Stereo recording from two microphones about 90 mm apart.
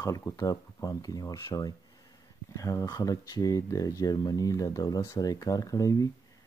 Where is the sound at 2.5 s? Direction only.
40° left (ahead or behind).